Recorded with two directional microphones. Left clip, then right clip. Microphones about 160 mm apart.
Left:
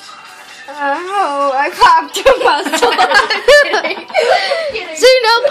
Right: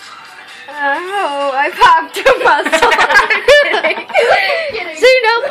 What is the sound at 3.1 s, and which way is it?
Speech, 25° left (ahead or behind).